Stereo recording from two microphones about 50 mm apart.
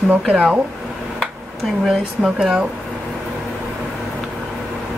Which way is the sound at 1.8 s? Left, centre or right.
Centre.